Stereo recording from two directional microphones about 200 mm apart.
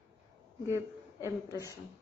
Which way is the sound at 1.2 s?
15° left (ahead or behind).